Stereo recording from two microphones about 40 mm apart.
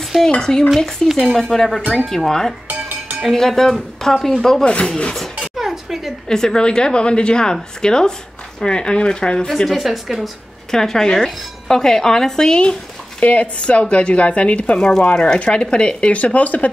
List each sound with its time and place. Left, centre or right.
0.3 s speech: centre
2.7 s dishes: right
3.3 s speech: centre
4.6 s speech: left
5.6 s a sound: centre
6.2 s speech: centre
9.7 s speech: centre
10.7 s speech: centre
13.2 s speech: left
14.8 s speech: centre; by 16.7 s left